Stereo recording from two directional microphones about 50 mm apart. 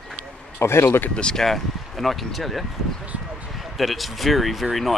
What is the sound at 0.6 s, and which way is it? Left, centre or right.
Speech, left.